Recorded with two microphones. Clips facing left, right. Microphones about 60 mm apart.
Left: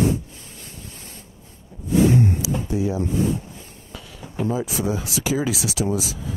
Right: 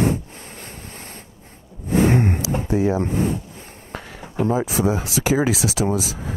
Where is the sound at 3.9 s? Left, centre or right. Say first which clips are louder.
Right 5 dB; right.